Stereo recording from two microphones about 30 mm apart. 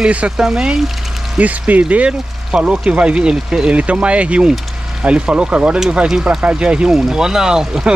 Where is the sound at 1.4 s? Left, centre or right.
Right.